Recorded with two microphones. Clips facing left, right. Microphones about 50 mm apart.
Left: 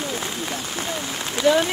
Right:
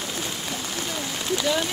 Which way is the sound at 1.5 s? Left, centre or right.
Left.